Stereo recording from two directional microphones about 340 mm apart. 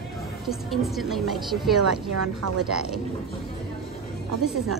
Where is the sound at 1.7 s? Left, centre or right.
Right.